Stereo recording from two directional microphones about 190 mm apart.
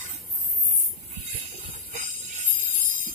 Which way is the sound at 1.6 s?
40° right (ahead or behind).